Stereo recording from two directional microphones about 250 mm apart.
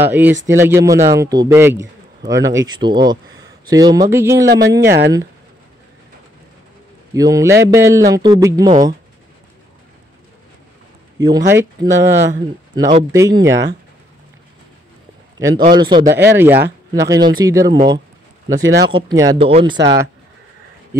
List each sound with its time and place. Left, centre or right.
0.0 s a man's voice: centre
4.7 s speech: right
7.2 s a man's voice: centre
11.2 s a man's voice: centre
13.1 s a man's voice: centre
15.3 s a man's voice: centre
18.6 s speech: right
18.9 s a man's voice: centre